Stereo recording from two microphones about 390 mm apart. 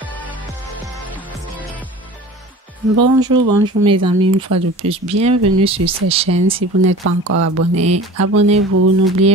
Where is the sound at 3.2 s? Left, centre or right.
Centre.